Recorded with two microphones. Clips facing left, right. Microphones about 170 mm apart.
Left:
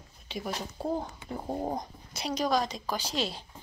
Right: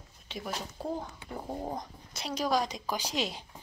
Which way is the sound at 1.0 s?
25° left (ahead or behind).